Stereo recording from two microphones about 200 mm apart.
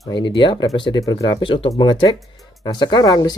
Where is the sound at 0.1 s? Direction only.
25° left (ahead or behind).